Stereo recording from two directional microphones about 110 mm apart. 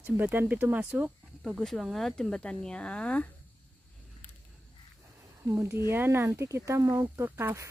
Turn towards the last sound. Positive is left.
turn(degrees=-20)  # may be behind; listen again after turning